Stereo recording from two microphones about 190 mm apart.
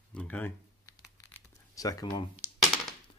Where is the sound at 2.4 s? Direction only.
10° right (ahead or behind).